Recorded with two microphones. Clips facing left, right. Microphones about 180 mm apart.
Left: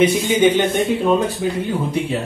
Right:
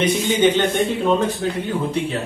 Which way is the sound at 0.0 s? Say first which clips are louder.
Left 3 dB; 10° left (ahead or behind).